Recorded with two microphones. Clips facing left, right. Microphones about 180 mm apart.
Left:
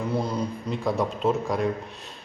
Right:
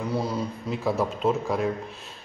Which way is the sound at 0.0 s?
Centre (ahead or behind).